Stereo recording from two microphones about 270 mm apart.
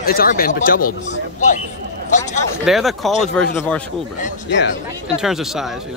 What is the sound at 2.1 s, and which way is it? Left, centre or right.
Speech, left.